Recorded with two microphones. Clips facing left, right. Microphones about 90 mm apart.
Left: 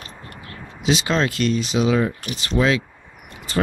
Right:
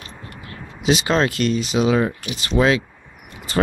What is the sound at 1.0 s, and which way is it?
Speech, 50° right (ahead or behind).